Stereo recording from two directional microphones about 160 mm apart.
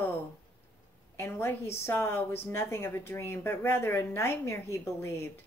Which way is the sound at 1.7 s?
15° left (ahead or behind).